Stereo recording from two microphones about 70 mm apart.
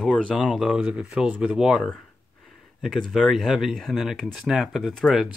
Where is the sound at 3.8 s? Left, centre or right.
Centre.